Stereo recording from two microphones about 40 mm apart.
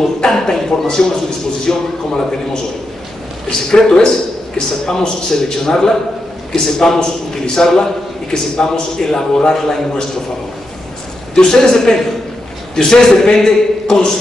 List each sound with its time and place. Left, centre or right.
0.0 s a man's voice: centre
11.3 s a man's voice: centre